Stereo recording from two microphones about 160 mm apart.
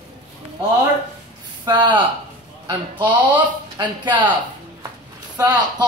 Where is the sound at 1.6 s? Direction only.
30° right (ahead or behind).